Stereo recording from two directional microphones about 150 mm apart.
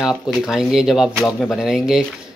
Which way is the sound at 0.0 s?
5° right (ahead or behind).